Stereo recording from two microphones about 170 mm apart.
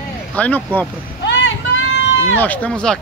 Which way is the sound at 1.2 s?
90° left.